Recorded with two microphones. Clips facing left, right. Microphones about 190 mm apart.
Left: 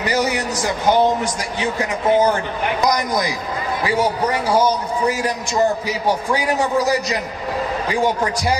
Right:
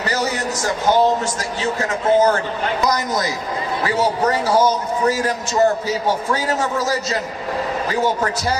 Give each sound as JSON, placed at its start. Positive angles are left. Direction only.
{"t": 0.0, "sound": "a man's voice", "side_deg": 15}